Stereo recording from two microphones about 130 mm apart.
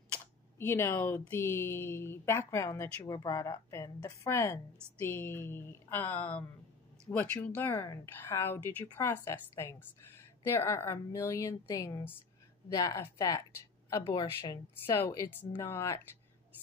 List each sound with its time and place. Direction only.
0.1 s camera: 20° left (ahead or behind)
1.3 s a woman's voice: 20° left (ahead or behind)